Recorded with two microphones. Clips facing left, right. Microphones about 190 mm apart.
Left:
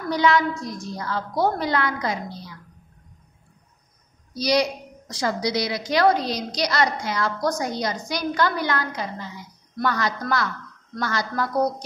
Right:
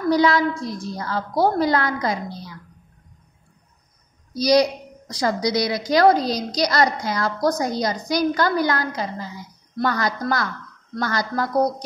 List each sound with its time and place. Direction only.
0.1 s a woman's voice: 35° right (ahead or behind)
4.4 s a woman's voice: 40° right (ahead or behind)